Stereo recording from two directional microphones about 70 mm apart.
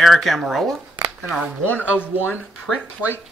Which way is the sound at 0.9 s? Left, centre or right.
Right.